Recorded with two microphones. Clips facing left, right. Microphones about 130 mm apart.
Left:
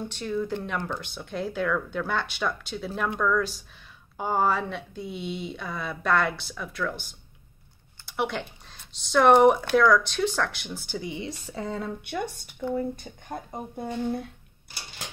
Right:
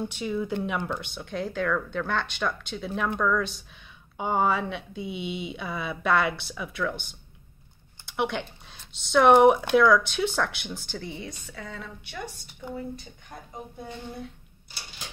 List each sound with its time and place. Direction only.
0.0 s speech: 5° right (ahead or behind)
10.9 s speech: 10° left (ahead or behind)
11.1 s speech: 30° left (ahead or behind)
12.0 s a woman's voice: 55° left (ahead or behind)